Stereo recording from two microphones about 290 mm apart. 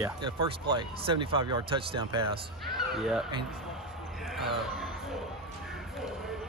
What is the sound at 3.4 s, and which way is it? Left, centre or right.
Basketball bounce, centre.